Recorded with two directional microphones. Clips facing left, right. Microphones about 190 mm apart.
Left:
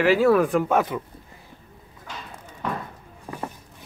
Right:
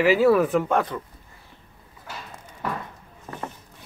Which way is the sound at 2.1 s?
5° right (ahead or behind).